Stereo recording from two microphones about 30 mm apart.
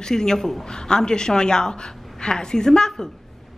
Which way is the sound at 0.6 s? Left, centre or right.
Left.